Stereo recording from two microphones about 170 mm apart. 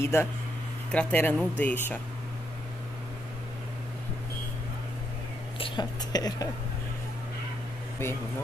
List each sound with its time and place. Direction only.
0.0 s speech: 15° left (ahead or behind)
5.6 s speech: 25° left (ahead or behind)